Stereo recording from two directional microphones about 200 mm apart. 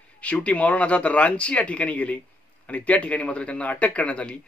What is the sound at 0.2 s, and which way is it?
Speech, 5° left (ahead or behind).